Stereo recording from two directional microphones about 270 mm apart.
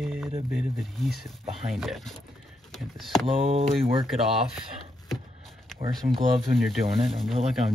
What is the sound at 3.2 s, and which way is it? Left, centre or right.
Speech, right.